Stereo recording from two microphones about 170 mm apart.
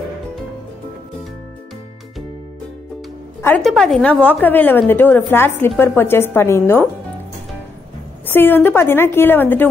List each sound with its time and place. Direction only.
3.4 s a woman's voice: 5° left (ahead or behind)
8.3 s a woman's voice: 10° left (ahead or behind)